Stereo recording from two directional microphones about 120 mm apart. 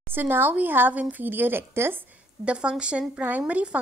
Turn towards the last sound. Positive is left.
turn(degrees=-10)  # may be behind; listen again after turning